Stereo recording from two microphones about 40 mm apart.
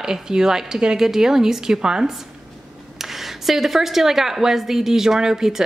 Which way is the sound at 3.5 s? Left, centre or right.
Centre.